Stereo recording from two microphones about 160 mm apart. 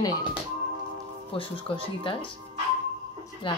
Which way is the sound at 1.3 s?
35° left (ahead or behind).